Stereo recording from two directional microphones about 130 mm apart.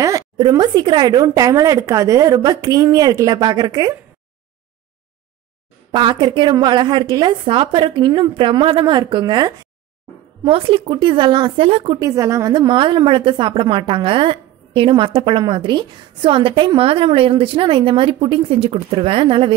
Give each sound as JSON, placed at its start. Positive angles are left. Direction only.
{"t": 0.0, "sound": "speech", "side_deg": -25}
{"t": 5.9, "sound": "a woman's voice", "side_deg": -35}
{"t": 10.5, "sound": "a woman's voice", "side_deg": -40}
{"t": 12.0, "sound": "speech", "side_deg": -25}
{"t": 12.5, "sound": "a woman's voice", "side_deg": -40}